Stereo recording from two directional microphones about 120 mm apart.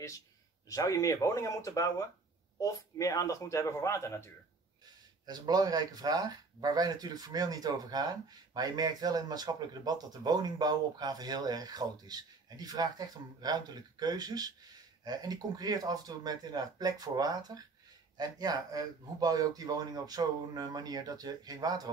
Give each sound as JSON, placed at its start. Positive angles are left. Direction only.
{"t": 0.7, "sound": "speech", "side_deg": 25}
{"t": 5.2, "sound": "speech", "side_deg": -35}